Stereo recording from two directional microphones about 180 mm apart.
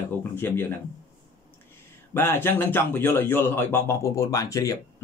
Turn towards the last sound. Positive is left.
turn(degrees=20)  # may be behind; listen again after turning